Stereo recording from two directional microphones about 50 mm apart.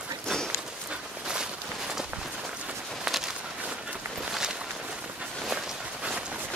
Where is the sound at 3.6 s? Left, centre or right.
Right; by 5.8 s centre.